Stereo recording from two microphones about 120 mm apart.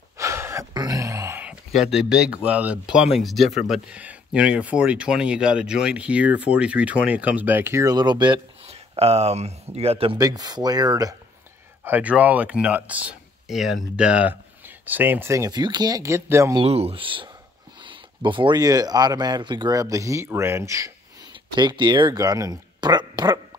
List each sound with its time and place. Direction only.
0.2 s a sound: 25° right (ahead or behind)
1.4 s speech: 5° right (ahead or behind); by 8.4 s 40° right (ahead or behind)
8.6 s speech: 60° right (ahead or behind)
10.1 s speech: 30° right (ahead or behind)
11.8 s speech: 15° right (ahead or behind)
16.6 s speech: 55° right (ahead or behind); by 21.3 s 25° right (ahead or behind)
21.3 s speech: 40° right (ahead or behind)